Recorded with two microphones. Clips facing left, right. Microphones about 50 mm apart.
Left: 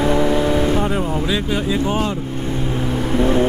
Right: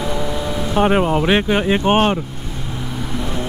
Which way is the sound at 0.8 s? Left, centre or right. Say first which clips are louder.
Right 5 dB; right.